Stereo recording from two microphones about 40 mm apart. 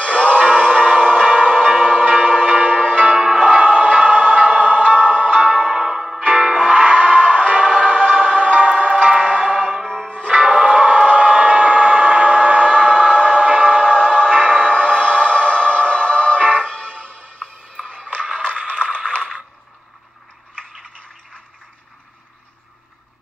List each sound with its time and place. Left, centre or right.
0.0 s music: left
0.3 s music: right
5.4 s music: centre
6.2 s music: right
6.7 s music: right
9.8 s music: centre
10.3 s a sound: right
14.3 s music: right
15.0 s music: left
18.6 s a sound: right